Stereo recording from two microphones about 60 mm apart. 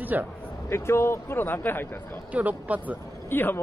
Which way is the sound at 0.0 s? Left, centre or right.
Right.